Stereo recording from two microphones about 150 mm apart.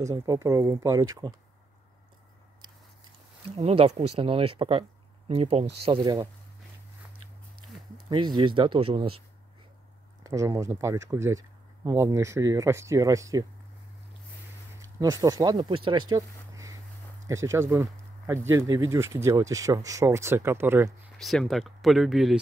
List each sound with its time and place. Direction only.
0.0 s speech: 20° right (ahead or behind)
3.5 s speech: 45° right (ahead or behind)
8.1 s speech: 30° right (ahead or behind)
10.2 s speech: 20° right (ahead or behind)
14.8 s speech: 25° right (ahead or behind)
21.2 s speech: centre (ahead or behind)